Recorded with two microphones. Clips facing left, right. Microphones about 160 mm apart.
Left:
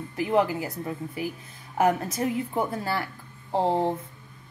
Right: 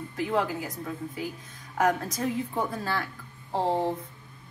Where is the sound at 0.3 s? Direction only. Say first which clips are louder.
Left 5 dB; 25° left (ahead or behind).